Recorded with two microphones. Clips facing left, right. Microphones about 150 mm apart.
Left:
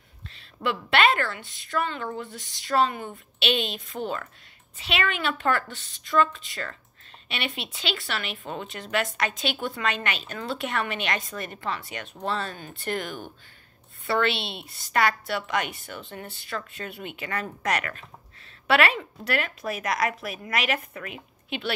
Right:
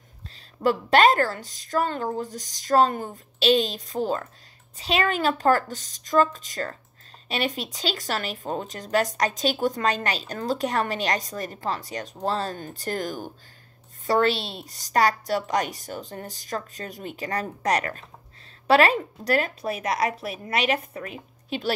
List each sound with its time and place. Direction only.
0.3 s speech: 40° right (ahead or behind)